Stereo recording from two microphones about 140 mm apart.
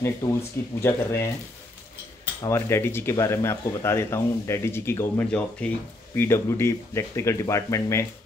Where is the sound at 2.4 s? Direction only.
20° left (ahead or behind).